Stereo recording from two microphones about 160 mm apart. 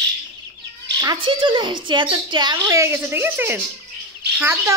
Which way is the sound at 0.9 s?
30° right (ahead or behind).